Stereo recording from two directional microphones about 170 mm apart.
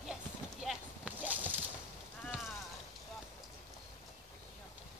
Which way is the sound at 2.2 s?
Centre (ahead or behind).